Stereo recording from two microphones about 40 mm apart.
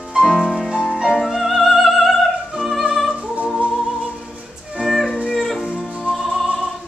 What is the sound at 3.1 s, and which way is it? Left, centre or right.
Music, right.